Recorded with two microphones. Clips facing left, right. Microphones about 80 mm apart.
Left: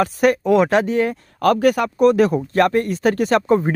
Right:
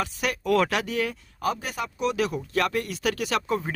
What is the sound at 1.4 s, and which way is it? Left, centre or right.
Speech, left.